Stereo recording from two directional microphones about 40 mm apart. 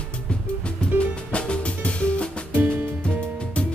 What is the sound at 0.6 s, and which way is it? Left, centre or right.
Music, left.